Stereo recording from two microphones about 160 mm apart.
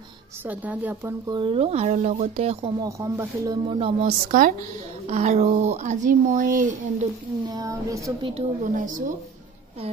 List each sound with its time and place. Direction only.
0.5 s a woman's voice: 10° right (ahead or behind)
1.3 s speech: 35° right (ahead or behind)
2.8 s speech: 20° right (ahead or behind)
4.0 s a woman's voice: 60° right (ahead or behind)
5.0 s speech: 45° right (ahead or behind)
7.4 s speech: 20° right (ahead or behind)
8.7 s speech: 55° right (ahead or behind)